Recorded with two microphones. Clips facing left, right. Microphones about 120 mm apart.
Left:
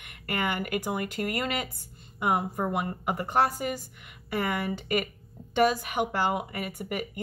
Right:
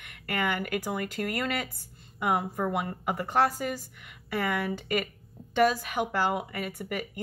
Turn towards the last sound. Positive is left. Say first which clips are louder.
# left 1 dB
turn(degrees=15)  # may be behind; listen again after turning